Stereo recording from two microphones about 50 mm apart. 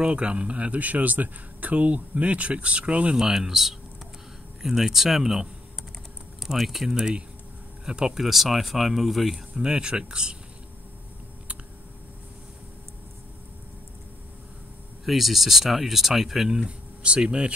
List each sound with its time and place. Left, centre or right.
0.0 s speech: right
3.2 s speech: centre
7.0 s speech: centre
9.6 s speech: centre
15.0 s speech: centre
16.6 s speech: right